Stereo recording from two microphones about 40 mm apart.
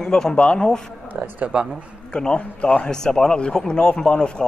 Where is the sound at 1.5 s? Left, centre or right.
Right.